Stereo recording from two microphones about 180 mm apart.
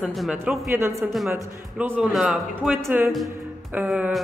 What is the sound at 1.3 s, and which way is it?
Speech, 10° right (ahead or behind).